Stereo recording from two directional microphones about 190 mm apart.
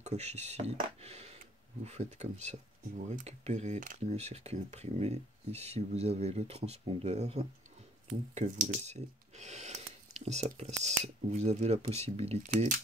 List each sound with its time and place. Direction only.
0.0 s speech: 35° right (ahead or behind)